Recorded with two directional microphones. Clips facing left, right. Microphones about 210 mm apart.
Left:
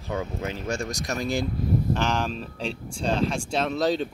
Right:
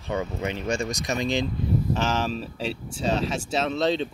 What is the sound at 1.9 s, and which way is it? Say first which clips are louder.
Speech: even; 5° right (ahead or behind).